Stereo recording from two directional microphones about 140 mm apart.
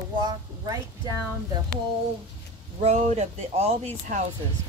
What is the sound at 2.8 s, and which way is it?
Speech, 55° right (ahead or behind).